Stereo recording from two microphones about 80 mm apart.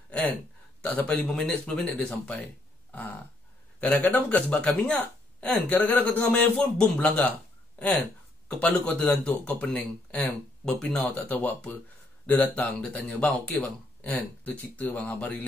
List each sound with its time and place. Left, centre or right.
0.8 s speech: centre
3.8 s speech: left
8.5 s speech: centre
10.6 s speech: centre
11.1 s speech: centre